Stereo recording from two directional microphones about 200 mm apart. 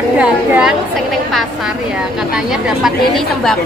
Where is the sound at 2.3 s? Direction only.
Centre (ahead or behind).